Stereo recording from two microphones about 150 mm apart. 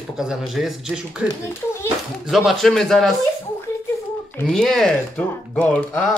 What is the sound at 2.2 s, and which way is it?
Speech, centre (ahead or behind).